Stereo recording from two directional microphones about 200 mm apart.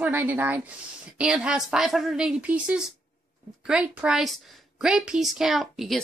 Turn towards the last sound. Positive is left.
turn(degrees=0)  # may be behind; listen again after turning